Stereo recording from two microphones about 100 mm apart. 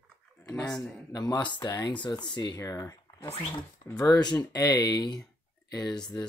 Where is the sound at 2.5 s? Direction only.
30° left (ahead or behind).